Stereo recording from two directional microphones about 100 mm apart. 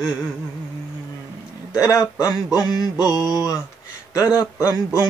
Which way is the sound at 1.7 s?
35° left (ahead or behind).